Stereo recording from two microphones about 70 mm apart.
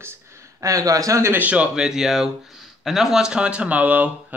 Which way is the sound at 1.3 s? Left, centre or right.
Right.